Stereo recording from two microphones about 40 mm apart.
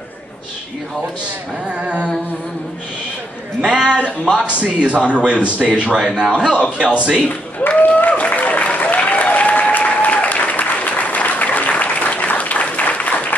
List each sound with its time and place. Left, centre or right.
1.7 s a man's voice: right
3.6 s a man's voice: right
5.9 s a man's voice: centre
6.6 s a man's voice: right
7.2 s applause: left